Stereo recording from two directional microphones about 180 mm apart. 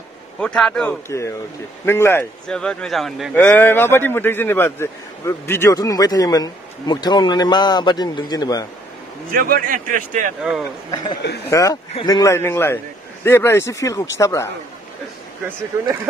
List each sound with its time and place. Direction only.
0.4 s a man's voice: 5° left (ahead or behind)
1.0 s a man's voice: 15° left (ahead or behind); by 3.3 s centre (ahead or behind)
3.3 s a man's voice: 10° left (ahead or behind)
9.3 s a man's voice: 50° right (ahead or behind)
11.5 s a man's voice: 20° left (ahead or behind)